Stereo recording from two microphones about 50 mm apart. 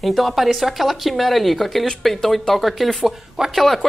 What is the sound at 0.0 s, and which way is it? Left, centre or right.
Speech, centre.